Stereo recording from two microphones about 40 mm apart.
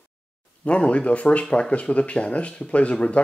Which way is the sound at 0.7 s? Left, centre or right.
Left.